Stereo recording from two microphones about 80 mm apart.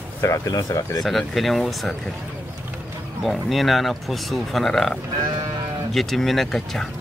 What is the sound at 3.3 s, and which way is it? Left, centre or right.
Speech, centre.